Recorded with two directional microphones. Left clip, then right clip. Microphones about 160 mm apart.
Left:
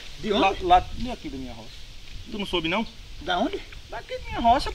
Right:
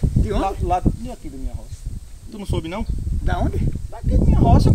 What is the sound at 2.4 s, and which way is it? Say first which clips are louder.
Speech: left 2 dB; 25° right (ahead or behind).